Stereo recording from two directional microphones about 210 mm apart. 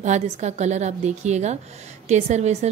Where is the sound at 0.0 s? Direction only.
35° right (ahead or behind).